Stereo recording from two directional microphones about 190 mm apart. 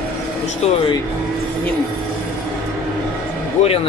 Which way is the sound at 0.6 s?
35° left (ahead or behind).